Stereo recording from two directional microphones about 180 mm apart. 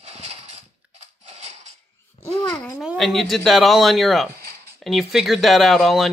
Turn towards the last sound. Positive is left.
turn(degrees=0)  # may be behind; listen again after turning